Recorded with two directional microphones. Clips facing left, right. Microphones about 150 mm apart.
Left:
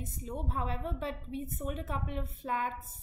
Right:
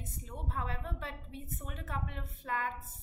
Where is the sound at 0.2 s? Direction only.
20° left (ahead or behind).